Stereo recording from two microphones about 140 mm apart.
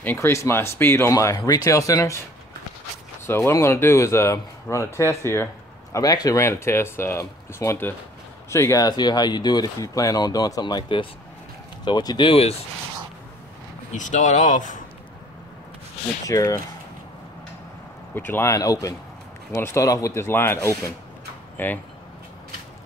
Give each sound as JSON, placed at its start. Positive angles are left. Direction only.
{"t": 0.0, "sound": "speech", "side_deg": 15}
{"t": 3.3, "sound": "speech", "side_deg": 20}
{"t": 12.3, "sound": "speech", "side_deg": 45}
{"t": 13.9, "sound": "speech", "side_deg": 65}
{"t": 16.3, "sound": "speech", "side_deg": 25}
{"t": 18.1, "sound": "speech", "side_deg": 15}